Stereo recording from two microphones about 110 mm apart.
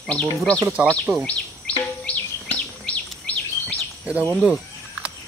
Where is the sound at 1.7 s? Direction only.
10° left (ahead or behind).